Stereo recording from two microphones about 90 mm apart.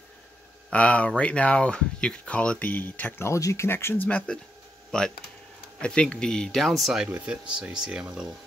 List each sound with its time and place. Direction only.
0.7 s speech: 15° left (ahead or behind)
3.3 s speech: 35° left (ahead or behind)
4.9 s speech: 10° left (ahead or behind)
7.1 s speech: 15° right (ahead or behind)